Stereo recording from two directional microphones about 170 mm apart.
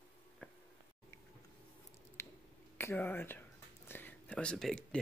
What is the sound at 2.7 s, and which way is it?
Whispering, 15° left (ahead or behind).